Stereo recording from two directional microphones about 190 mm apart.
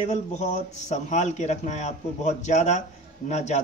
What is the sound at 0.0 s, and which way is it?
A man's voice, 40° left (ahead or behind).